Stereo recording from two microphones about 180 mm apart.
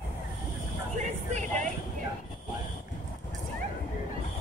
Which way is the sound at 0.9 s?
40° right (ahead or behind).